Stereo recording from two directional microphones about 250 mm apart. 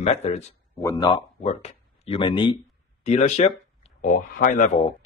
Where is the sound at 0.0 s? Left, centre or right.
Left.